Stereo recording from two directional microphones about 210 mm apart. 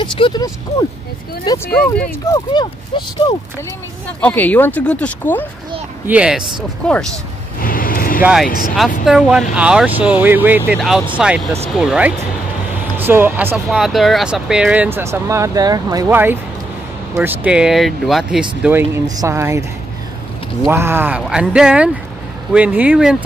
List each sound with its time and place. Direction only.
0.0 s speech: 20° left (ahead or behind)
4.2 s speech: 10° left (ahead or behind)
6.0 s speech: 5° right (ahead or behind)
7.6 s vehicle: 40° left (ahead or behind)
8.2 s speech: 5° right (ahead or behind)
20.7 s speech: 10° right (ahead or behind)